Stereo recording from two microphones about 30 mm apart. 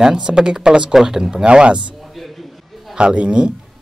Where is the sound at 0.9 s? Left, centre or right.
Centre.